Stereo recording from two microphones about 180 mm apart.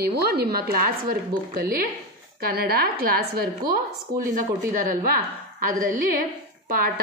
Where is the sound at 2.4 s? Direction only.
55° right (ahead or behind).